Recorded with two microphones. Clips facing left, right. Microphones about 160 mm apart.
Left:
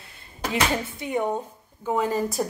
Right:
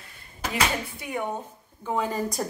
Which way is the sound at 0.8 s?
25° left (ahead or behind).